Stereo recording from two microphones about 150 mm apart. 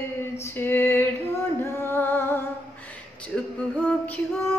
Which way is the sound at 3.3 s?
Centre (ahead or behind).